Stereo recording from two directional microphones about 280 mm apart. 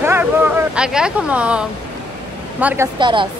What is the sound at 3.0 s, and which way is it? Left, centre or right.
Speech, centre.